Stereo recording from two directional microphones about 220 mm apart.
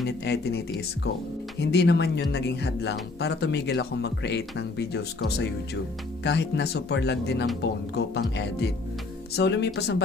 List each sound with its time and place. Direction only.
0.2 s speech: 50° left (ahead or behind)